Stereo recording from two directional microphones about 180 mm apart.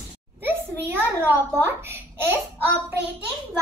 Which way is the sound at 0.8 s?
10° right (ahead or behind).